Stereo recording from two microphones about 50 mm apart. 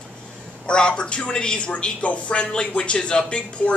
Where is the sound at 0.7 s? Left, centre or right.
Centre.